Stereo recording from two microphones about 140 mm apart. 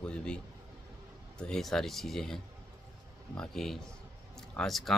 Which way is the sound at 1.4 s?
5° left (ahead or behind).